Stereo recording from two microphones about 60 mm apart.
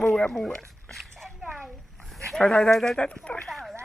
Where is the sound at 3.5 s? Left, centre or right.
Centre.